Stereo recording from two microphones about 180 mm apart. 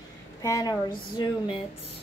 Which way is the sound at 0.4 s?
20° left (ahead or behind).